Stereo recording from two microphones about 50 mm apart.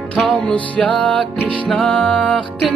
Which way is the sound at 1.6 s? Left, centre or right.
Centre.